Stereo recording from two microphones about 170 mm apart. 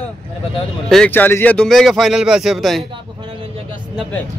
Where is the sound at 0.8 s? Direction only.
5° left (ahead or behind).